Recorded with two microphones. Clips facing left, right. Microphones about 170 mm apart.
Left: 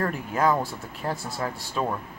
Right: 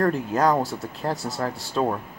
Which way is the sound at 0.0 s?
40° right (ahead or behind).